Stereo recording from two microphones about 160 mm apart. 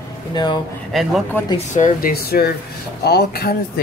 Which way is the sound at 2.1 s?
75° left (ahead or behind).